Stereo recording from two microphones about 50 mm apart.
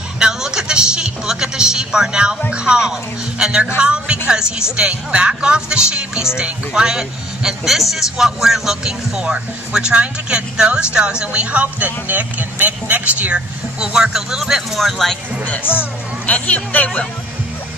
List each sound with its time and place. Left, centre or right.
0.2 s vehicle: centre
2.5 s a man's voice: centre
13.7 s speech: centre
14.8 s speech: centre
15.4 s speech: left